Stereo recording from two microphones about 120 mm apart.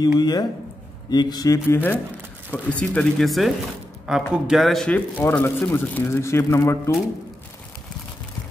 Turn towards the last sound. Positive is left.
turn(degrees=25)  # may be behind; listen again after turning